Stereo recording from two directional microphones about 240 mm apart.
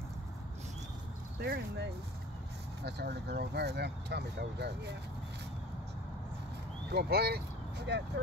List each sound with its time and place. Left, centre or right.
1.4 s speech: right
6.9 s speech: right